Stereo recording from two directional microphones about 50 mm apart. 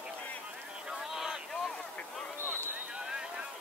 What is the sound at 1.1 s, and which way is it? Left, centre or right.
Speech, centre.